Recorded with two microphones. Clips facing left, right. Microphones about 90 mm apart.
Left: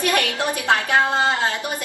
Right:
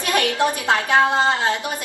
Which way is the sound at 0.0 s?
20° right (ahead or behind).